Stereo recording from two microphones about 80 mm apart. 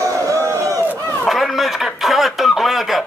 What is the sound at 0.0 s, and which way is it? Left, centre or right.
Crowd, right.